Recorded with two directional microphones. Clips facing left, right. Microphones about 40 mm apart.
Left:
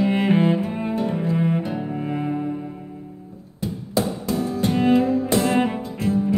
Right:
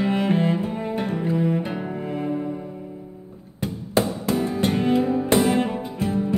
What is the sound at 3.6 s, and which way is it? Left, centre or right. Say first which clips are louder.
Music: right 1 dB; right.